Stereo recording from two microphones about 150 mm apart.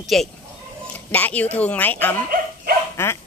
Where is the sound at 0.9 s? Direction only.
10° left (ahead or behind).